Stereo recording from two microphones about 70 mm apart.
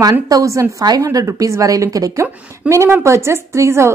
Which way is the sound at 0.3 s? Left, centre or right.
Right.